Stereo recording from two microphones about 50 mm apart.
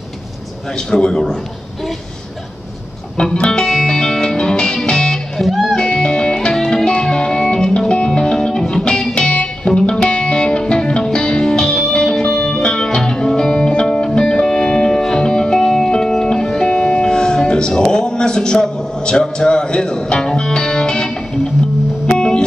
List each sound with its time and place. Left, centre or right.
0.7 s a man's voice: centre
3.3 s music: centre
5.4 s music: centre
5.8 s music: centre